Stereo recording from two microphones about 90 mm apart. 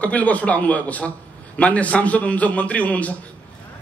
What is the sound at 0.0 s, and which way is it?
A man's voice, 15° left (ahead or behind).